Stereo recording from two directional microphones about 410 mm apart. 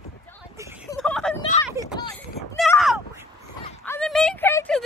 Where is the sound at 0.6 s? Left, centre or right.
Centre.